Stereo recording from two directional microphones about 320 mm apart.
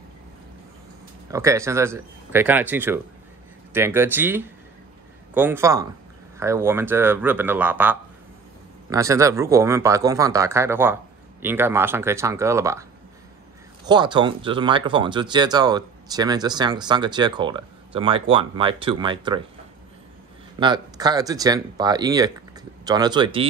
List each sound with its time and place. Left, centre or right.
1.3 s speech: centre
13.8 s speech: centre
20.5 s speech: centre